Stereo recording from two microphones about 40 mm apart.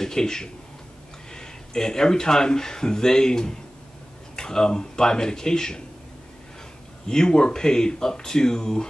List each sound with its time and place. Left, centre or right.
0.0 s speech: centre
7.1 s speech: centre